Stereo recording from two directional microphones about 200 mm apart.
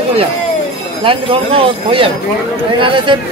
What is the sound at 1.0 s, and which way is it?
Speech, 25° right (ahead or behind).